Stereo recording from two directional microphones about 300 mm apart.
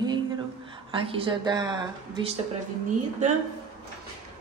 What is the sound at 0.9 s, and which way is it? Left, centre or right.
A woman's voice, centre.